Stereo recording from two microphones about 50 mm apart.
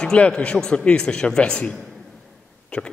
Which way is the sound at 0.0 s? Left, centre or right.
Centre.